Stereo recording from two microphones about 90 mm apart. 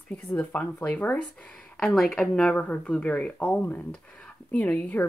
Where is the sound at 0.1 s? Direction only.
20° left (ahead or behind).